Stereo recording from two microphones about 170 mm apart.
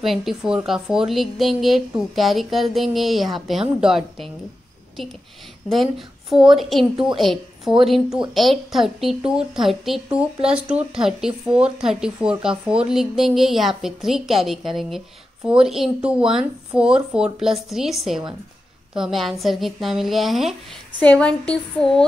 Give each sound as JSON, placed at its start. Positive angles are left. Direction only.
{"t": 0.0, "sound": "speech", "side_deg": 0}
{"t": 5.7, "sound": "speech", "side_deg": 0}